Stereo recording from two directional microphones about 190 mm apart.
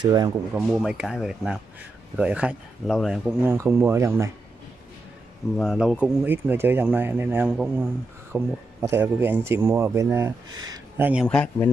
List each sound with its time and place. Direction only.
0.0 s speech: 20° right (ahead or behind)
0.6 s speech: centre (ahead or behind)
5.6 s speech: centre (ahead or behind)
11.2 s speech: 5° left (ahead or behind)